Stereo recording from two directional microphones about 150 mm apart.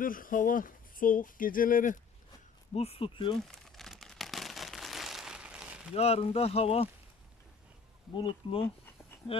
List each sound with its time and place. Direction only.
0.0 s speech: 65° left (ahead or behind)
2.7 s speech: 40° left (ahead or behind)
3.5 s crumpling: centre (ahead or behind)
5.9 s speech: 45° left (ahead or behind)
8.1 s speech: 30° left (ahead or behind)